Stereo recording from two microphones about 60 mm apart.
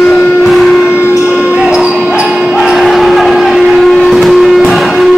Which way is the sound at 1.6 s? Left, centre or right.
Centre.